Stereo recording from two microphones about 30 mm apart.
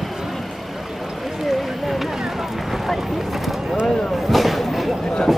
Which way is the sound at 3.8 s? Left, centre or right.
Centre.